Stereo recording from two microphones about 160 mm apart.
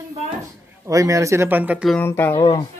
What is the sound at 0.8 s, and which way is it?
Speech, 20° right (ahead or behind).